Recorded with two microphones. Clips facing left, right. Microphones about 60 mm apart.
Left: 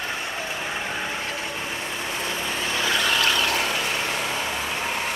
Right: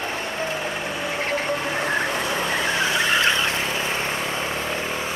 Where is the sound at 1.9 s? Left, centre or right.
Right.